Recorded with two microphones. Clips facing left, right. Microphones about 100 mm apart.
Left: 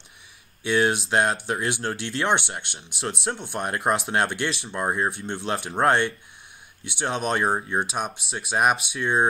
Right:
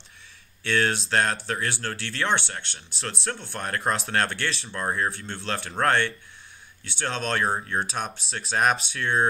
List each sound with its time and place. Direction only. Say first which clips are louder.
0.7 s speech: left 3 dB; 15° left (ahead or behind)